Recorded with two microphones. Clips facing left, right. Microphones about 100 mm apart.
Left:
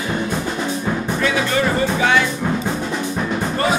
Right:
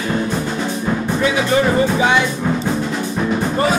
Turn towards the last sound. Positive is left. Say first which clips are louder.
# right 3 dB
turn(degrees=-5)  # may be behind; listen again after turning